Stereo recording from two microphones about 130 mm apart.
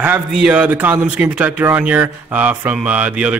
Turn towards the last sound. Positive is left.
turn(degrees=-10)  # may be behind; listen again after turning